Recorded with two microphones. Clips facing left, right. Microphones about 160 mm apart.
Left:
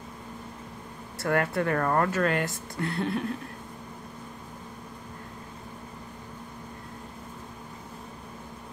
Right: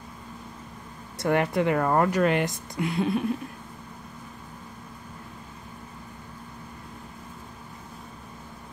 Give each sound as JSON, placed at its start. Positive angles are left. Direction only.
{"t": 1.1, "sound": "speech", "side_deg": -20}